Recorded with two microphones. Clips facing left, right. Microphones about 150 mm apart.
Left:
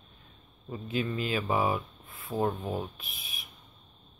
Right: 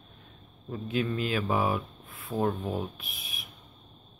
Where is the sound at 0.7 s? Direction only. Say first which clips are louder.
Right 2 dB; centre (ahead or behind).